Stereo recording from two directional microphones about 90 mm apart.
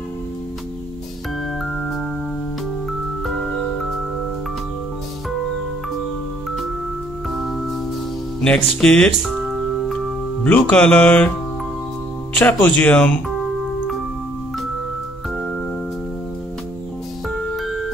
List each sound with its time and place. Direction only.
7.3 s organ: centre (ahead or behind)
8.4 s speech: 10° left (ahead or behind)
9.2 s music: 5° right (ahead or behind)
10.4 s speech: 15° left (ahead or behind)
12.4 s speech: 15° left (ahead or behind)
17.6 s music: centre (ahead or behind)